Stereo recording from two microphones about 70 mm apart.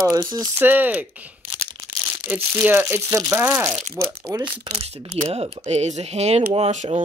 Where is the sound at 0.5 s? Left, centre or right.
Right.